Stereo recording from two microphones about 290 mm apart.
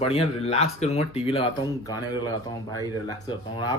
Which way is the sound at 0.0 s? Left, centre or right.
Centre.